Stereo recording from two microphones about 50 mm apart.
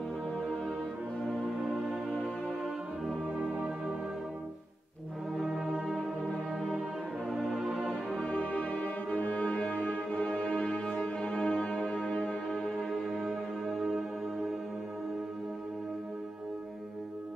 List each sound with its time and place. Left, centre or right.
1.2 s music: left
5.5 s music: right
5.9 s music: left
8.3 s music: left
13.2 s music: centre